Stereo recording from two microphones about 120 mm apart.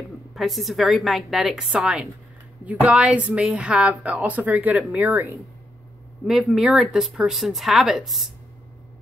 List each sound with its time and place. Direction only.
0.3 s a woman's voice: centre (ahead or behind); by 5.3 s 15° right (ahead or behind)
6.2 s speech: 5° right (ahead or behind)